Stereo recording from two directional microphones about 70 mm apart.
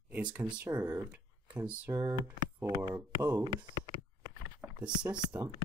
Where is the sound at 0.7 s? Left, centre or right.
Right.